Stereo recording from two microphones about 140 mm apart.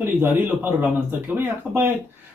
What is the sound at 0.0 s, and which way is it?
Speech, 15° right (ahead or behind).